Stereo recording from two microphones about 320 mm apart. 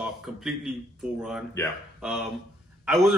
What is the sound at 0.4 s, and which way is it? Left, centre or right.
Speech, centre.